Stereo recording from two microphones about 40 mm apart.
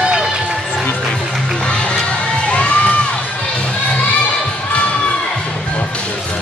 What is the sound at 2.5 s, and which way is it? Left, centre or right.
Crowd, left.